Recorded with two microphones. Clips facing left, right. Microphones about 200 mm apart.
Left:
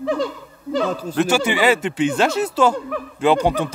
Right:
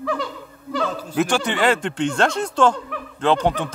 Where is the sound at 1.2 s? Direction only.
5° left (ahead or behind).